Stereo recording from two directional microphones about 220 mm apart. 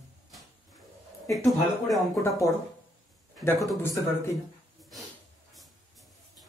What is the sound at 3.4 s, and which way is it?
Speech, 15° left (ahead or behind).